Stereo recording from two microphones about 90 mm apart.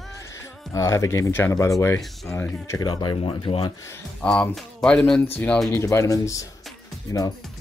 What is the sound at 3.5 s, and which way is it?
Speech, 60° left (ahead or behind).